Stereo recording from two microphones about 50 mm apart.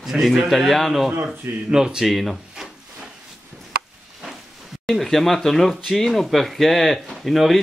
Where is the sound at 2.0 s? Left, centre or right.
Centre.